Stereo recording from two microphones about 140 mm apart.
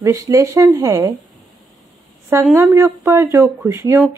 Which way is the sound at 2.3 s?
15° right (ahead or behind).